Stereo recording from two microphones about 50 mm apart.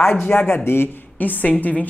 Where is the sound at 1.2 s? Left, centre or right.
Left.